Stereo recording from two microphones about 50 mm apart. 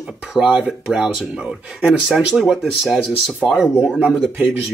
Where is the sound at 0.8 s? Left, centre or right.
Centre.